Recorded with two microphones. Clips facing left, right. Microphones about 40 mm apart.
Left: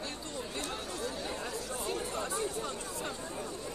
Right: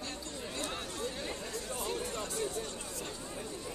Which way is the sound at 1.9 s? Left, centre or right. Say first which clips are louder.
Left 3 dB; centre.